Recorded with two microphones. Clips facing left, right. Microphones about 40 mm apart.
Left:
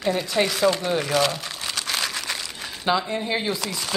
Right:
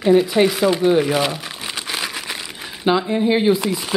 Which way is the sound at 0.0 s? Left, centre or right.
Centre.